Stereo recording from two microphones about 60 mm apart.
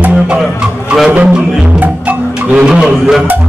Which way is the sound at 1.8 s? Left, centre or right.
Right.